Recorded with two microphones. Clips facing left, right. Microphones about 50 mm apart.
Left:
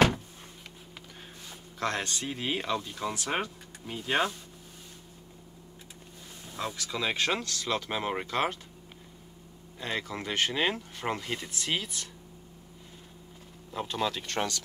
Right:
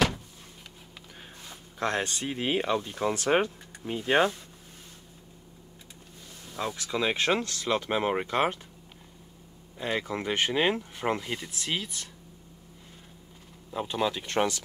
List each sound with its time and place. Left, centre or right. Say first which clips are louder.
1.8 s speech: right 2 dB; right
6.5 s speech: right 3 dB; centre
9.8 s speech: right 4 dB; centre
11.2 s speech: even; centre
13.7 s speech: right 2 dB; centre